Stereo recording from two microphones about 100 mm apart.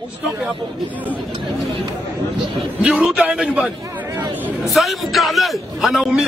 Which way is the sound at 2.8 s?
10° right (ahead or behind).